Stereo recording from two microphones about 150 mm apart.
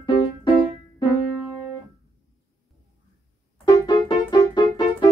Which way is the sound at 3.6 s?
30° left (ahead or behind).